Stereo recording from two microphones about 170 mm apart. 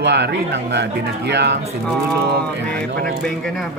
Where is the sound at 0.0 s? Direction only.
90° right.